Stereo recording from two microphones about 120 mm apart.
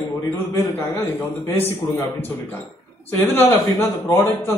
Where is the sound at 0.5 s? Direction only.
20° left (ahead or behind).